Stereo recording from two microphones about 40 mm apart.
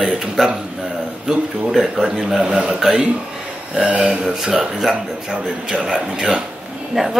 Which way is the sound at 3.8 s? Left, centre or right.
Right.